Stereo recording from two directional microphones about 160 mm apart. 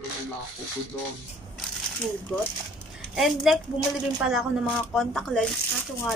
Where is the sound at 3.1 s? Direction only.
Centre (ahead or behind).